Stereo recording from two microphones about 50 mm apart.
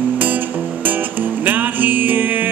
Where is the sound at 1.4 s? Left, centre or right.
Right.